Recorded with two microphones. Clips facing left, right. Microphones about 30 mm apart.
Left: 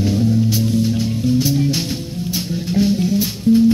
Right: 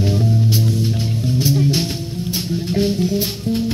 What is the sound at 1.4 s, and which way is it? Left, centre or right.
Music, centre.